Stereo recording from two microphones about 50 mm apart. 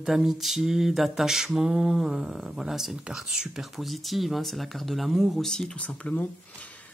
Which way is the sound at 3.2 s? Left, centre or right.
Centre.